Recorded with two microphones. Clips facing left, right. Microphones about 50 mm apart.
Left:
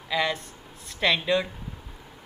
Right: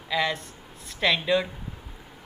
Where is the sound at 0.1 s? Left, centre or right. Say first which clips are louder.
Even; centre.